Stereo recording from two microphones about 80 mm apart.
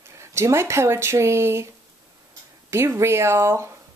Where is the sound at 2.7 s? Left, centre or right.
Right.